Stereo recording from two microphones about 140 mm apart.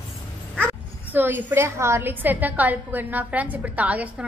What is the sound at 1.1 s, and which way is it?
A woman's voice, 15° right (ahead or behind).